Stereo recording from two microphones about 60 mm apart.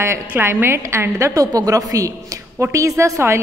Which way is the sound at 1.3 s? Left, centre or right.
Right.